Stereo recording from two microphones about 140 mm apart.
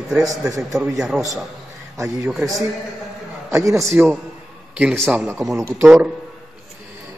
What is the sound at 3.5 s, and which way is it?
Speech, 20° right (ahead or behind).